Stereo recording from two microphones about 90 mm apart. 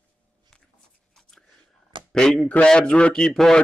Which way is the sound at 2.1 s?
10° left (ahead or behind).